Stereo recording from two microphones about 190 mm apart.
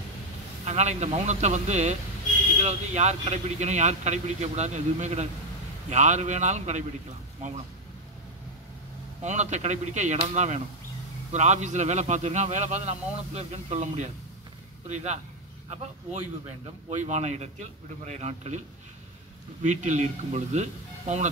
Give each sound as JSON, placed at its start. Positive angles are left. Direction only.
{"t": 0.7, "sound": "a man's voice", "side_deg": -35}
{"t": 9.2, "sound": "a man's voice", "side_deg": -35}
{"t": 19.6, "sound": "a man's voice", "side_deg": -40}